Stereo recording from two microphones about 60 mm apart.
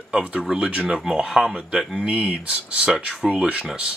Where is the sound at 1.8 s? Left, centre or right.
Centre.